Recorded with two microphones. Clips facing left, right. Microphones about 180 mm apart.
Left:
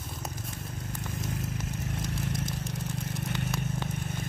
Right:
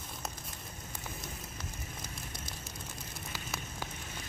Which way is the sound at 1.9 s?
80° left.